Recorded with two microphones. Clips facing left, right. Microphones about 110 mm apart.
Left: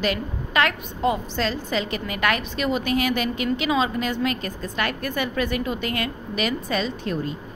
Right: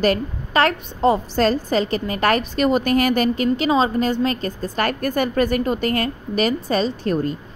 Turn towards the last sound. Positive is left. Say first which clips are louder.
# right 6 dB
turn(degrees=-40)  # may be behind; listen again after turning